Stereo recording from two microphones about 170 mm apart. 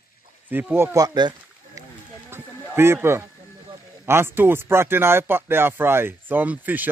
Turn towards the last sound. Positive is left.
turn(degrees=-10)  # may be behind; listen again after turning